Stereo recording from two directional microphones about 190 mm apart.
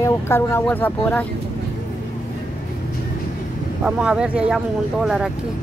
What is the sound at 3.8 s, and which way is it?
Speech, 5° right (ahead or behind).